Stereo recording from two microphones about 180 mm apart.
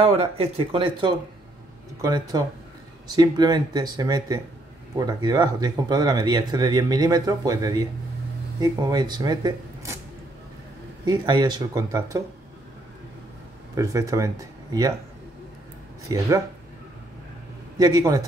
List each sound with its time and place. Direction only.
0.0 s speech: 35° right (ahead or behind)
11.1 s speech: 25° right (ahead or behind)
13.7 s speech: 20° right (ahead or behind)
16.1 s speech: 20° right (ahead or behind)
17.7 s speech: 20° right (ahead or behind)